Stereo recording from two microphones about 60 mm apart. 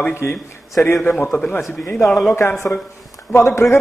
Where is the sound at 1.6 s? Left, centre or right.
Left.